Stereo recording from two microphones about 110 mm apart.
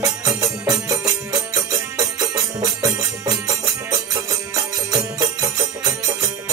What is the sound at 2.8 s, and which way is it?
Music, 35° right (ahead or behind).